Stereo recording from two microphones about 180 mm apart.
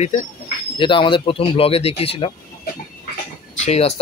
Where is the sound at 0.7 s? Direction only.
30° left (ahead or behind).